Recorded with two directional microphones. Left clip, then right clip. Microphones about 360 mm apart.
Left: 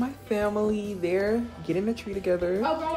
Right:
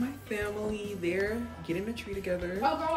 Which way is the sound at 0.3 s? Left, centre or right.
Centre.